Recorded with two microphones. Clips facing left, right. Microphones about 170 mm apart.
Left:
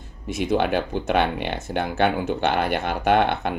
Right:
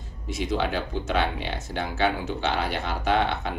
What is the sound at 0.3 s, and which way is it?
Speech, 55° left (ahead or behind).